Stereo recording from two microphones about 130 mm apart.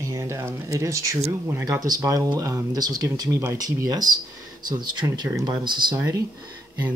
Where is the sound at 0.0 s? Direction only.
25° right (ahead or behind).